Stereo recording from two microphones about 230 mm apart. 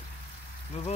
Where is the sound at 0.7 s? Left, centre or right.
Left.